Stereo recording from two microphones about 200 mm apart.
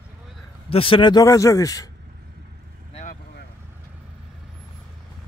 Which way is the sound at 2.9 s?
40° left (ahead or behind).